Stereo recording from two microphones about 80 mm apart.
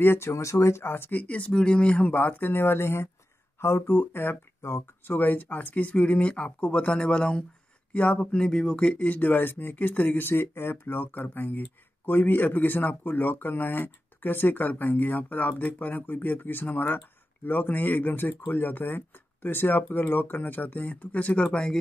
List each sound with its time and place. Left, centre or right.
0.0 s speech: left; by 21.7 s centre